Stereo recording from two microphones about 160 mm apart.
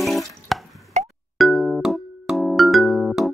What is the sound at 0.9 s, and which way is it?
Plop, 45° right (ahead or behind).